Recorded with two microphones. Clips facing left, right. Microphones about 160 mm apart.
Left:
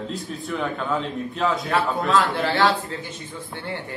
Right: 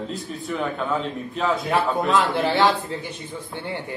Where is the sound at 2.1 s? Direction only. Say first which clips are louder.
Left 1 dB; 20° right (ahead or behind).